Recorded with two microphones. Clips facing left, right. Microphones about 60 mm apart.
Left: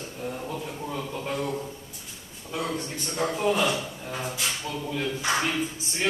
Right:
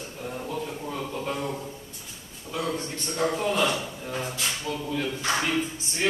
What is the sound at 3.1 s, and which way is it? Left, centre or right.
Speech, centre.